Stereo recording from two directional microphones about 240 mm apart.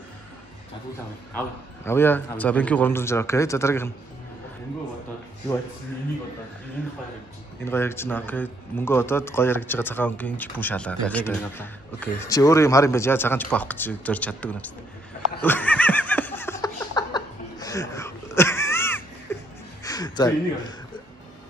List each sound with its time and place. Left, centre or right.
1.9 s speech: centre
6.8 s speech: centre
15.4 s laughter: centre
19.3 s music: centre